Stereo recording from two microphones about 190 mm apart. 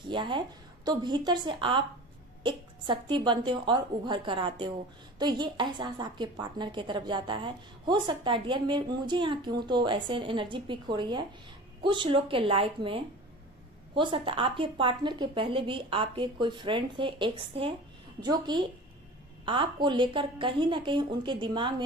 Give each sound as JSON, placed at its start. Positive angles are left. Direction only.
{"t": 0.1, "sound": "a woman's voice", "side_deg": -25}